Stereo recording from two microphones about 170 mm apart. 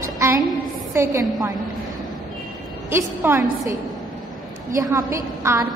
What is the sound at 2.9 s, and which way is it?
Speech, 15° right (ahead or behind).